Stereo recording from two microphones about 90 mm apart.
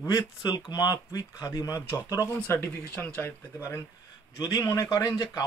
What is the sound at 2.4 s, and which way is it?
A man's voice, 25° left (ahead or behind).